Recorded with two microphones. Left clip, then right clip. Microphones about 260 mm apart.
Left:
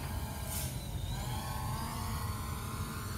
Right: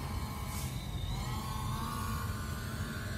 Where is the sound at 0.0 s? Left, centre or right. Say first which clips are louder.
Right 1 dB; centre.